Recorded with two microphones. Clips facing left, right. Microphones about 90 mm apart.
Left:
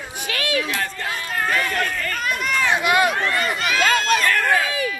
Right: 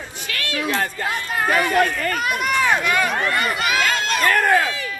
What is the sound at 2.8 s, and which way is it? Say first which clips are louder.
Run: left 2 dB; 5° left (ahead or behind).